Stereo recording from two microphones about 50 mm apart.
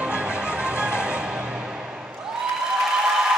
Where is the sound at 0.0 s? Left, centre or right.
Centre.